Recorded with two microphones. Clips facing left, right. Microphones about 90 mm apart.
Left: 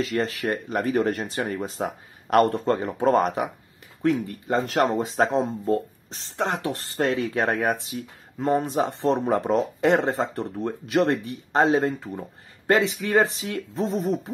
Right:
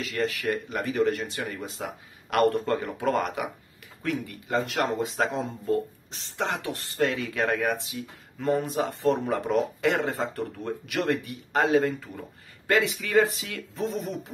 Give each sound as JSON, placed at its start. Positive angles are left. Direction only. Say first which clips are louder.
{"t": 0.0, "sound": "speech", "louder": "left 3 dB", "side_deg": 35}